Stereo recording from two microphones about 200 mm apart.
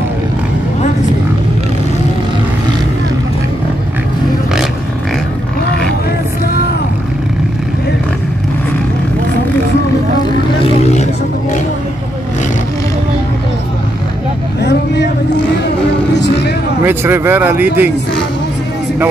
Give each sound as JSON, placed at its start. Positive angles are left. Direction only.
{"t": 10.8, "sound": "vehicle", "side_deg": 35}
{"t": 14.6, "sound": "vehicle", "side_deg": 60}
{"t": 16.2, "sound": "a sound", "side_deg": 55}
{"t": 16.8, "sound": "speech", "side_deg": -10}